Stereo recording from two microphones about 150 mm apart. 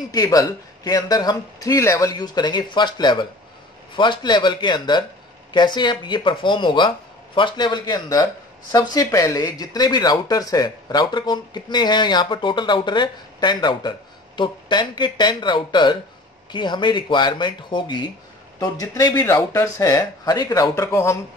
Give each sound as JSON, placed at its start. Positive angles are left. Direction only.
{"t": 0.1, "sound": "speech", "side_deg": 25}